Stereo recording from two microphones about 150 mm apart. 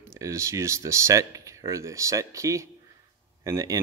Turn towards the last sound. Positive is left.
turn(degrees=-20)  # may be behind; listen again after turning